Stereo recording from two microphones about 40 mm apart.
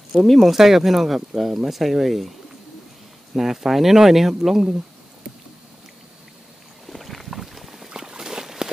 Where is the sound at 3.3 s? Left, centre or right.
Centre.